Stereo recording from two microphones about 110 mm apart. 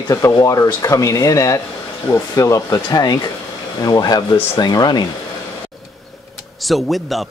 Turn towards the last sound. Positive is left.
turn(degrees=0)  # may be behind; listen again after turning